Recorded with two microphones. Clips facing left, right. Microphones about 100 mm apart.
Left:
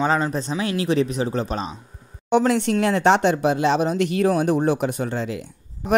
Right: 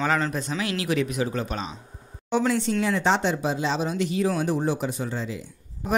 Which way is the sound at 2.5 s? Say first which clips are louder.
Left 4 dB; 65° left (ahead or behind).